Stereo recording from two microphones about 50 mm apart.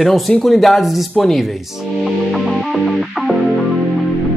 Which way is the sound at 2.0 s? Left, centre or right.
Centre.